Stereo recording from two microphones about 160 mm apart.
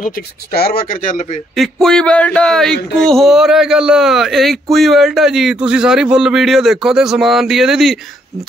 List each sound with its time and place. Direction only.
0.0 s speech: 75° left (ahead or behind); by 1.4 s 55° left (ahead or behind)
1.5 s a man's voice: centre (ahead or behind)